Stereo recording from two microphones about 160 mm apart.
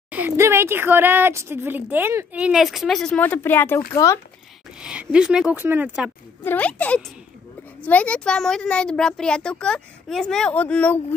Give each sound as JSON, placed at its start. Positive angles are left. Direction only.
{"t": 0.1, "sound": "speech", "side_deg": -15}
{"t": 4.7, "sound": "a child's voice", "side_deg": -5}
{"t": 6.4, "sound": "a child's voice", "side_deg": 10}